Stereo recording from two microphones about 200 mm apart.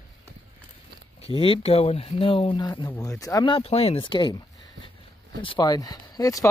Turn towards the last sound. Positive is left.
turn(degrees=15)  # may be behind; listen again after turning